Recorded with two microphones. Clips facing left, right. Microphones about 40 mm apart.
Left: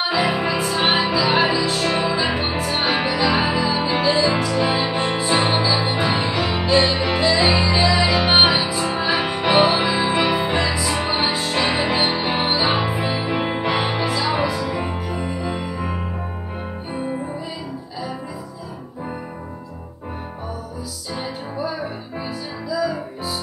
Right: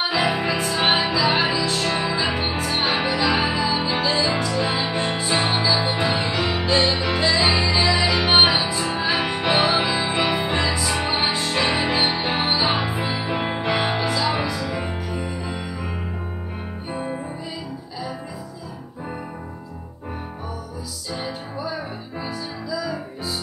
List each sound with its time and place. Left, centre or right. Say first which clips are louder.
0.1 s music: left 1 dB; centre
15.2 s music: left 4 dB; left
22.7 s music: left 6 dB; centre